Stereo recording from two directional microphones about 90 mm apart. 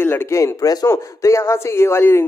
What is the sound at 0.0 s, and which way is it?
Speech, 25° left (ahead or behind).